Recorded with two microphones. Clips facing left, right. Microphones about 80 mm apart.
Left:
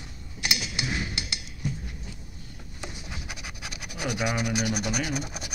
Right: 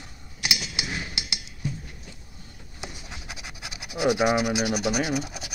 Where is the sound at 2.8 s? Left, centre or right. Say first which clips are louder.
Even; centre.